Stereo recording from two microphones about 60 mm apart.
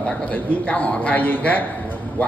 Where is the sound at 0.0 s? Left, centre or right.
Left.